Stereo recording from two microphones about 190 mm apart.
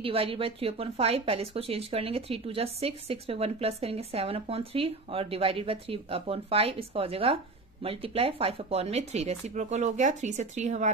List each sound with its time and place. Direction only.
0.0 s speech: 30° right (ahead or behind)